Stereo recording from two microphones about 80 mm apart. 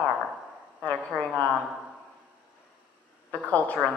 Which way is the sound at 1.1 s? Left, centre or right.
Centre.